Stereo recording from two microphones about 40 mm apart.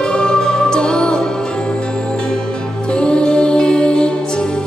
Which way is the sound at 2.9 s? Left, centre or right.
Left.